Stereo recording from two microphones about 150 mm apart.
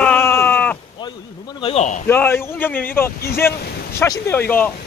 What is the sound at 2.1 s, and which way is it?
Speech, 15° left (ahead or behind).